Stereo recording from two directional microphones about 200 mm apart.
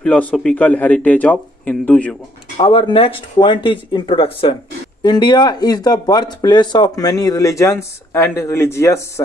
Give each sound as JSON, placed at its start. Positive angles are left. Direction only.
{"t": 0.0, "sound": "a man's voice", "side_deg": 5}
{"t": 2.5, "sound": "speech", "side_deg": 25}